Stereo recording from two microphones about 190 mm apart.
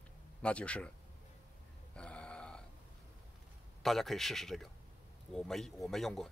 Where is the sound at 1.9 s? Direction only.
5° left (ahead or behind).